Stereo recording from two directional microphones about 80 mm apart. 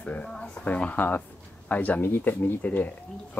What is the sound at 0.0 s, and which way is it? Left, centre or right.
Speech, centre.